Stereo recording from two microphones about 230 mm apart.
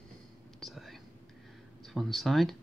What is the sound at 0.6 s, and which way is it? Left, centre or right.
Whispering, centre.